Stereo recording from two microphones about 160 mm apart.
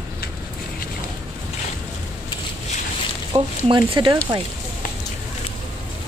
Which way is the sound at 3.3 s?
30° right (ahead or behind).